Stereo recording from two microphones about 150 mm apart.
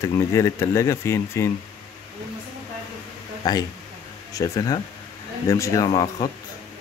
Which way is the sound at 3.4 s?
25° left (ahead or behind).